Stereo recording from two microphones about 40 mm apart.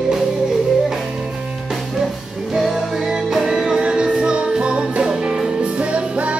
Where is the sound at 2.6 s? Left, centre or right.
Centre.